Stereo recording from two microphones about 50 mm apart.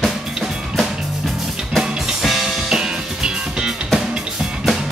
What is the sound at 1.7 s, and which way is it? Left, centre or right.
Music, centre.